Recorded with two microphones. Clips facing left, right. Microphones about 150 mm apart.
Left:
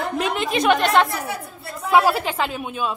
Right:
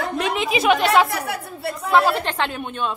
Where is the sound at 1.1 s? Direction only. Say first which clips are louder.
Right 1 dB; 70° right (ahead or behind).